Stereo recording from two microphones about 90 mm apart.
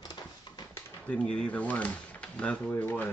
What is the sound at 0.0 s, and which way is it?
Dog, 50° left (ahead or behind).